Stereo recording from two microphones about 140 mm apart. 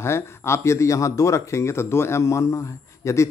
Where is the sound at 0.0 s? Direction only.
20° left (ahead or behind).